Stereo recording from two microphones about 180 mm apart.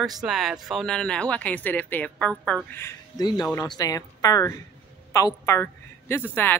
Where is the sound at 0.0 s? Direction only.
Centre (ahead or behind).